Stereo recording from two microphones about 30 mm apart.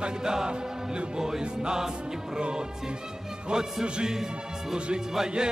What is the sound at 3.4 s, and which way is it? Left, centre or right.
Music, right.